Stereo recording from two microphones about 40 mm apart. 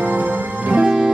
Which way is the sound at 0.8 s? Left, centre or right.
Centre.